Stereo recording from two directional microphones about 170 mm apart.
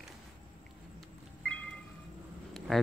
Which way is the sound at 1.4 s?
10° left (ahead or behind).